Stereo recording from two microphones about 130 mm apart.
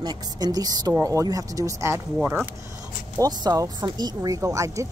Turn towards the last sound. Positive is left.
turn(degrees=-25)  # may be behind; listen again after turning